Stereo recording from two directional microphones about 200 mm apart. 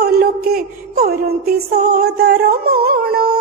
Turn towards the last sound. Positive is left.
turn(degrees=-50)  # may be behind; listen again after turning